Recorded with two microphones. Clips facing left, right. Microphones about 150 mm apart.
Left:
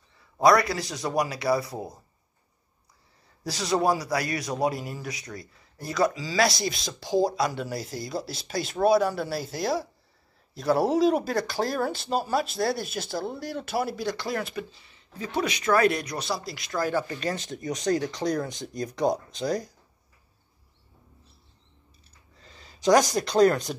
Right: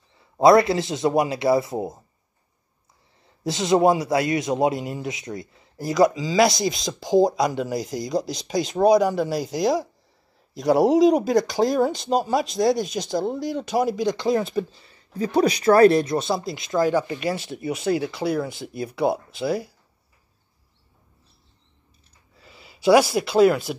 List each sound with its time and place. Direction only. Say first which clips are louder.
0.2 s a man's voice: right 5 dB; 25° right (ahead or behind)
3.4 s a man's voice: right 6 dB; 20° right (ahead or behind)
15.1 s speech: right 9 dB; 35° right (ahead or behind); by 19.7 s 10° right (ahead or behind)
22.4 s speech: right 4 dB; 10° right (ahead or behind)